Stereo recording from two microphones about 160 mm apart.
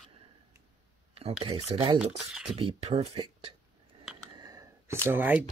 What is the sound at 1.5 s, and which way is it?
Speech, 35° right (ahead or behind).